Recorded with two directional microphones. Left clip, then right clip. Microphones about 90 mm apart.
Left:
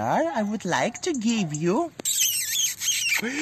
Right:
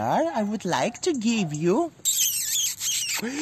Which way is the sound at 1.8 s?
20° right (ahead or behind).